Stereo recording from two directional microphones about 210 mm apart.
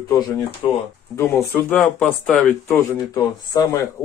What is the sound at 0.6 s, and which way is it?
Speech, 25° left (ahead or behind).